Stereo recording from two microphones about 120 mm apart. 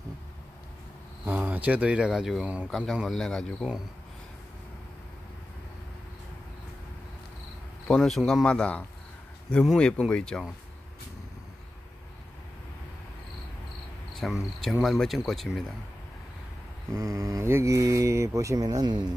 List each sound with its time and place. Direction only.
1.2 s speech: 15° right (ahead or behind); by 3.4 s 5° left (ahead or behind)
7.9 s speech: centre (ahead or behind)
14.2 s speech: centre (ahead or behind)
16.9 s speech: 25° right (ahead or behind)